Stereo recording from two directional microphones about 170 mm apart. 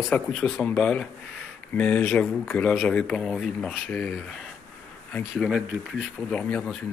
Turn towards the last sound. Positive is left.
turn(degrees=5)  # may be behind; listen again after turning